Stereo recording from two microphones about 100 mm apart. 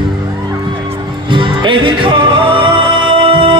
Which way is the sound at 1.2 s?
55° right (ahead or behind).